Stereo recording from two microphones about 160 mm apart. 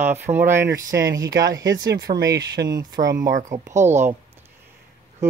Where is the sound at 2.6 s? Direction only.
25° right (ahead or behind).